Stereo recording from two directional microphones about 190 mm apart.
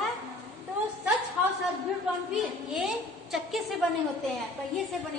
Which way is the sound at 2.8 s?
Centre (ahead or behind).